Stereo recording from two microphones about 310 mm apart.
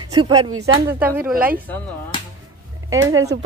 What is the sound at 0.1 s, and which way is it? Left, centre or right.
A woman's voice, centre.